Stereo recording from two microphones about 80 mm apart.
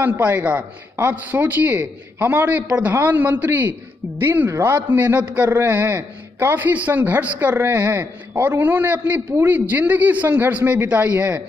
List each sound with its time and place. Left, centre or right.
0.2 s a man's voice: centre